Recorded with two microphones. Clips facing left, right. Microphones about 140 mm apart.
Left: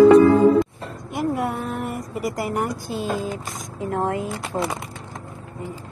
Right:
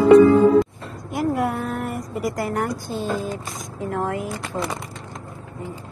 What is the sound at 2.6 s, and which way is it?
A woman's voice, 15° left (ahead or behind).